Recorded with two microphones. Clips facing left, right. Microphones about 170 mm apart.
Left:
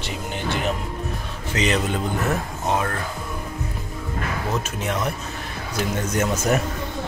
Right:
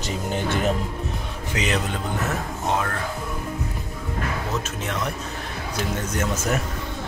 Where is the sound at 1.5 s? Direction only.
5° right (ahead or behind).